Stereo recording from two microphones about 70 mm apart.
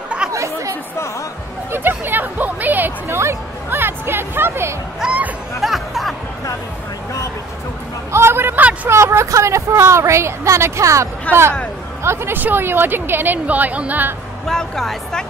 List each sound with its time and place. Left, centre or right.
0.3 s chatter: right
1.7 s speech: right
5.0 s speech: centre
5.6 s music: centre
8.1 s a sound: right
8.8 s a woman's voice: right
11.3 s speech: left
12.0 s speech: right
14.4 s a woman's voice: centre